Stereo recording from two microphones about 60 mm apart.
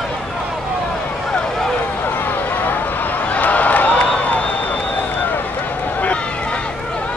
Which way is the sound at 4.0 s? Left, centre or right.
Left.